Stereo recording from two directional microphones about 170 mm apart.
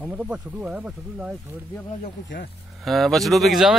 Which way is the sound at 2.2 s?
90° left.